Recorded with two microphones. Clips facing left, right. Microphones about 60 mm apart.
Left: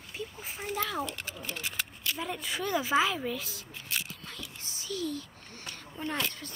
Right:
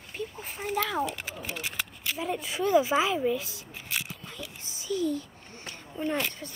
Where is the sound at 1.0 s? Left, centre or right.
Centre.